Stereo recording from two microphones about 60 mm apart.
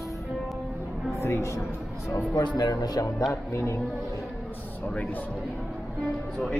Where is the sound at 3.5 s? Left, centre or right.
Left.